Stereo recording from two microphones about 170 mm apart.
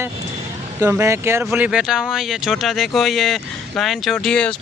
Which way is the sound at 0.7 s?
15° right (ahead or behind).